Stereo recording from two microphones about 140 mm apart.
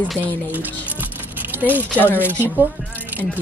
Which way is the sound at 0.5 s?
10° right (ahead or behind).